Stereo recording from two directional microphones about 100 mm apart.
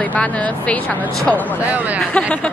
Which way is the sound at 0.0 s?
15° left (ahead or behind).